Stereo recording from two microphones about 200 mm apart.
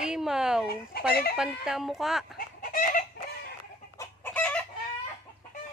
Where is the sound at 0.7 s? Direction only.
50° left (ahead or behind).